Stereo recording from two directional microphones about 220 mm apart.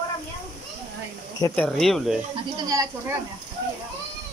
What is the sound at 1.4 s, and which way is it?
Speech, 5° left (ahead or behind).